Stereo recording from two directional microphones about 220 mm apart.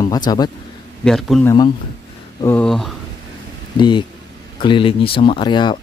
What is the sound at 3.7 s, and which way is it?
Speech, 20° left (ahead or behind).